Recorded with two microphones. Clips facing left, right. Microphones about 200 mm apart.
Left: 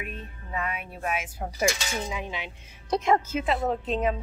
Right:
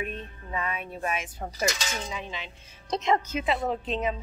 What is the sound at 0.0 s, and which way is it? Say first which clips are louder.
Speech: right 3 dB; 5° left (ahead or behind).